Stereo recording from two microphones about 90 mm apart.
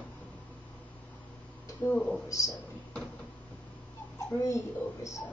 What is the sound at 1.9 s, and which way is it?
Speech, 10° left (ahead or behind).